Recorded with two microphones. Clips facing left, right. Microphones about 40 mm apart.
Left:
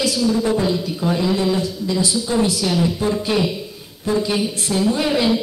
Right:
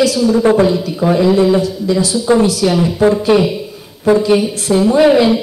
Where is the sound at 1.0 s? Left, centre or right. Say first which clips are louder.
Right 10 dB; right; by 3.7 s centre.